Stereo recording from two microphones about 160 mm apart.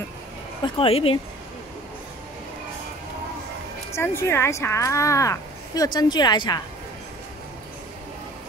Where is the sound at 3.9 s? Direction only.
15° left (ahead or behind).